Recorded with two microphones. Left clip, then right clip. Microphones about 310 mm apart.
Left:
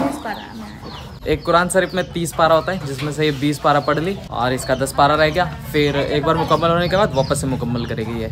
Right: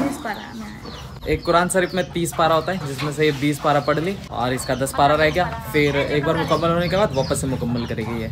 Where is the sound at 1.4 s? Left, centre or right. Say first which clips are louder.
Left 2 dB; centre.